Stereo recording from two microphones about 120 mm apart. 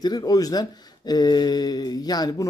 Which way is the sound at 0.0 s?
35° left (ahead or behind).